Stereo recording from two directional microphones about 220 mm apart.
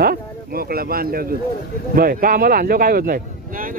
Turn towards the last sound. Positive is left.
turn(degrees=-40)  # may be behind; listen again after turning